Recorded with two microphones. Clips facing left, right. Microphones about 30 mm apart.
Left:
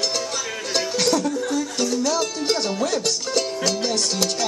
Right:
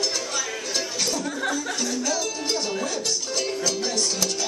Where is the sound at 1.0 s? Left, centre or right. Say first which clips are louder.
Left 8 dB; left.